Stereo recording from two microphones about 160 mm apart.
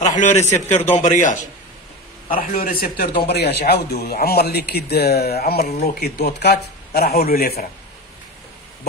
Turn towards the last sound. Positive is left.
turn(degrees=70)  # may be behind; listen again after turning